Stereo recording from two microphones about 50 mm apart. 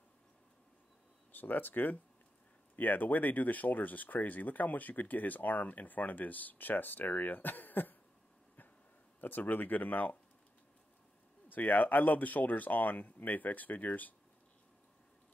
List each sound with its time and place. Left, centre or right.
1.3 s speech: left
9.2 s speech: left
11.4 s speech: left